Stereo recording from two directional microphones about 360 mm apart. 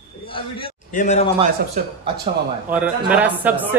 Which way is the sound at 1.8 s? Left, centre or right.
Centre.